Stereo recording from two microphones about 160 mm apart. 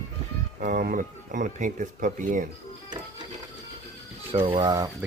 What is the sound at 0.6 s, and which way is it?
Speech, 55° right (ahead or behind).